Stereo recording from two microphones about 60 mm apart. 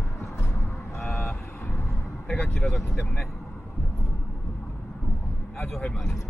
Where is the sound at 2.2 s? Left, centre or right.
Centre.